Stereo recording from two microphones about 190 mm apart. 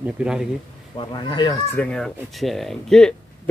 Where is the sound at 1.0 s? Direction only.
25° left (ahead or behind).